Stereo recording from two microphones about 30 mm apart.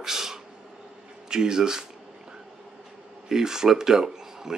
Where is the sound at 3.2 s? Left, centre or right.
Centre.